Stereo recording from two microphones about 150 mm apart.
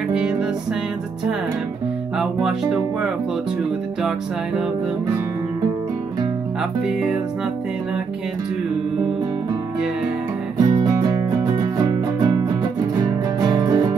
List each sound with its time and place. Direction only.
0.1 s music: 5° right (ahead or behind)
2.1 s speech: 5° right (ahead or behind)
6.9 s speech: centre (ahead or behind)
10.6 s music: 25° right (ahead or behind)